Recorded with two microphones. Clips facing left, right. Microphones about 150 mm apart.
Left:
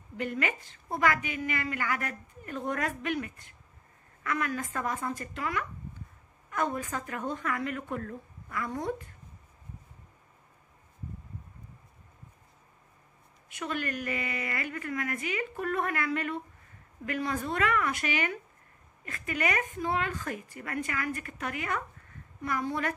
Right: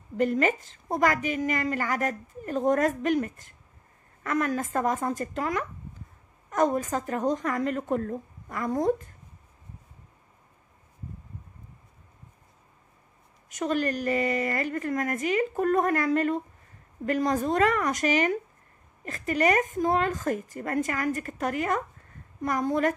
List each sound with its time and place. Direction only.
0.2 s a woman's voice: 40° right (ahead or behind)
13.5 s a woman's voice: 40° right (ahead or behind)